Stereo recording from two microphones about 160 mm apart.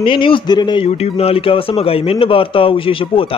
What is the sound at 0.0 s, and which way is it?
Speech, 30° left (ahead or behind).